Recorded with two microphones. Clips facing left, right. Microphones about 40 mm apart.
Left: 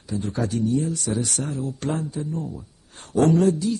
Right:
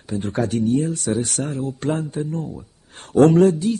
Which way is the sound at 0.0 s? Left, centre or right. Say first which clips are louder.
Right 3 dB; right.